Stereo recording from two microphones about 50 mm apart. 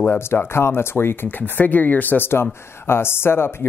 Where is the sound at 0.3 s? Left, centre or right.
Left.